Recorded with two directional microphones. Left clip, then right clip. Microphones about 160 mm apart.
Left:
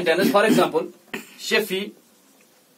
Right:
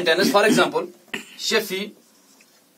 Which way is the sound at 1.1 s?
Centre (ahead or behind).